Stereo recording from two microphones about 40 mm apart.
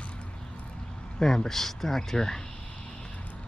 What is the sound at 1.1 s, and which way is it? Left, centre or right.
Speech, centre.